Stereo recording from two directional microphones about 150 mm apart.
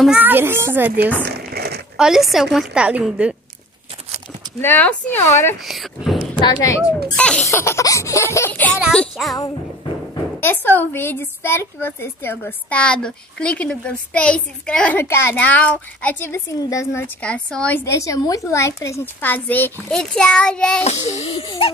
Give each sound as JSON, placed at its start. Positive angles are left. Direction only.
{"t": 0.0, "sound": "a child's voice", "side_deg": -10}
{"t": 1.2, "sound": "a sound", "side_deg": -90}
{"t": 2.0, "sound": "a woman's voice", "side_deg": -5}
{"t": 4.6, "sound": "speech", "side_deg": 10}
{"t": 5.6, "sound": "a woman's voice", "side_deg": 0}
{"t": 6.4, "sound": "a woman's voice", "side_deg": 25}
{"t": 7.2, "sound": "speech", "side_deg": 5}
{"t": 7.4, "sound": "a woman's voice", "side_deg": 20}
{"t": 8.7, "sound": "a woman's voice", "side_deg": 0}
{"t": 10.4, "sound": "speech", "side_deg": 15}
{"t": 16.5, "sound": "a woman's voice", "side_deg": 20}
{"t": 17.2, "sound": "a woman's voice", "side_deg": 5}
{"t": 20.8, "sound": "child singing", "side_deg": 45}